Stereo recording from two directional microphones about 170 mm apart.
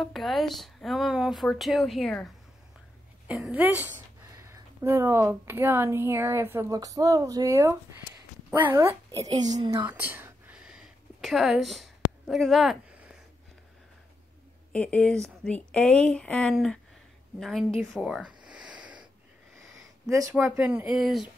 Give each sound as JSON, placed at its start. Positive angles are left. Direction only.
{"t": 0.0, "sound": "a woman's voice", "side_deg": 0}
{"t": 9.8, "sound": "a sound", "side_deg": -10}
{"t": 14.7, "sound": "speech", "side_deg": 5}
{"t": 20.1, "sound": "a woman's voice", "side_deg": -20}
{"t": 20.3, "sound": "speech", "side_deg": -10}